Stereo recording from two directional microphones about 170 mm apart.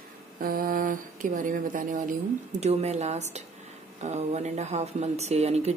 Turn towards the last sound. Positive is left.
turn(degrees=-40)  # may be behind; listen again after turning